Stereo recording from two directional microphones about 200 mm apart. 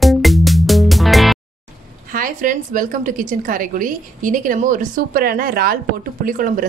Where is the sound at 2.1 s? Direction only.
45° right (ahead or behind).